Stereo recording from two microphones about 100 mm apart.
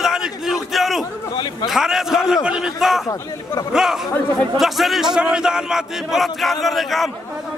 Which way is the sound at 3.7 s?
5° right (ahead or behind).